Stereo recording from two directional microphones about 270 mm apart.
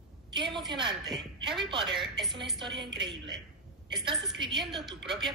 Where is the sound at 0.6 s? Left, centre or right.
Centre.